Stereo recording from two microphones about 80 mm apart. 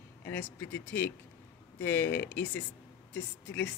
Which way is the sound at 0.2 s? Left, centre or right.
Left.